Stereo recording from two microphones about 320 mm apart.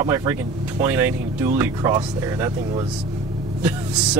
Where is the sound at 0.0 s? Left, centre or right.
Centre.